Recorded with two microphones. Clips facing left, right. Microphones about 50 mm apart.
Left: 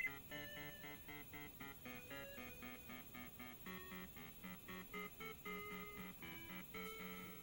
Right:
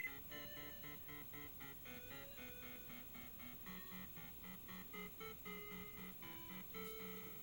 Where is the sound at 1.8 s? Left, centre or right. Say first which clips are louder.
Left 4 dB; left.